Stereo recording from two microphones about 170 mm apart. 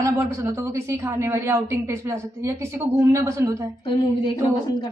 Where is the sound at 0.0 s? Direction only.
15° right (ahead or behind).